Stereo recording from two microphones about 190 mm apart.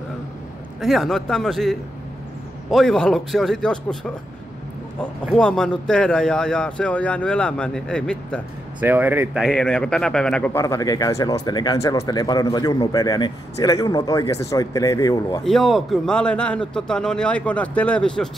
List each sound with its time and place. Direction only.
0.7 s speech: centre (ahead or behind)
5.2 s speech: centre (ahead or behind)
8.8 s speech: 10° right (ahead or behind); by 10.6 s 5° left (ahead or behind)
10.6 s speech: 20° left (ahead or behind)
15.4 s speech: centre (ahead or behind)